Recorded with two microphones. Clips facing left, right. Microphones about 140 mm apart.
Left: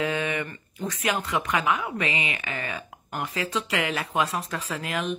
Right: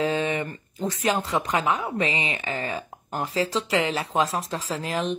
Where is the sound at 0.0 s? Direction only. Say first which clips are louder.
Right 3 dB; 30° right (ahead or behind).